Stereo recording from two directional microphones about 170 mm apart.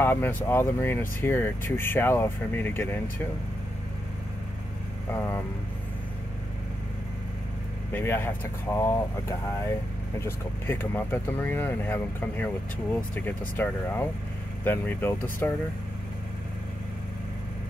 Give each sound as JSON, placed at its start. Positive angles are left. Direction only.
{"t": 0.0, "sound": "speech", "side_deg": 10}
{"t": 5.1, "sound": "speech", "side_deg": 15}
{"t": 7.9, "sound": "speech", "side_deg": 15}
{"t": 10.2, "sound": "speech", "side_deg": 15}